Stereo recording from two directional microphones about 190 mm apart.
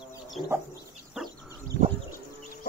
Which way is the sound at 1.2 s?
5° right (ahead or behind).